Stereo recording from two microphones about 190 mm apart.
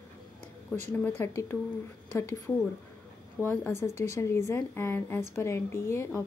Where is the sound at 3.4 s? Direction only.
15° left (ahead or behind).